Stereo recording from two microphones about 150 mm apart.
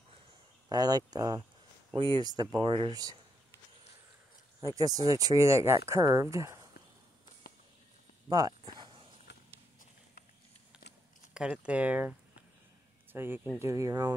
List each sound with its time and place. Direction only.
0.7 s speech: 25° right (ahead or behind)
4.6 s speech: 25° right (ahead or behind)
8.3 s speech: 25° right (ahead or behind)
8.6 s a sound: 35° right (ahead or behind)
9.3 s a sound: 80° left
11.3 s speech: 5° right (ahead or behind); by 14.1 s 25° right (ahead or behind)